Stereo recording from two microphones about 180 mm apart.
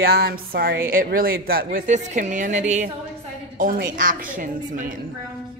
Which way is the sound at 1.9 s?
40° right (ahead or behind).